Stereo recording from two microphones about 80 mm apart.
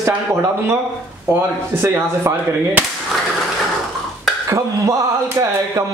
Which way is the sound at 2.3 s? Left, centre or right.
Right.